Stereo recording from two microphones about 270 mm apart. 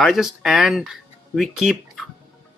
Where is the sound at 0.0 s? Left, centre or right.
Centre.